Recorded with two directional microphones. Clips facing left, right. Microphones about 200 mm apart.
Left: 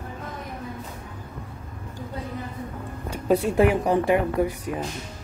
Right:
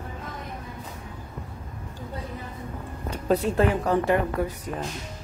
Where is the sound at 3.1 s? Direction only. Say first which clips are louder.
Left 2 dB; 10° left (ahead or behind).